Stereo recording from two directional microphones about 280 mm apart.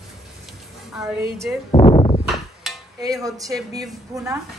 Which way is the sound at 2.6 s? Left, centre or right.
Centre.